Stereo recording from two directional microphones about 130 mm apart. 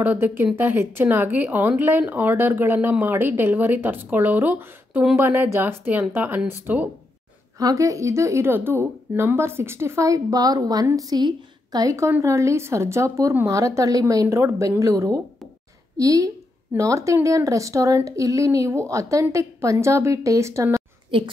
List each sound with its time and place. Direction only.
0.0 s speech: 15° right (ahead or behind)
7.5 s speech: 25° right (ahead or behind)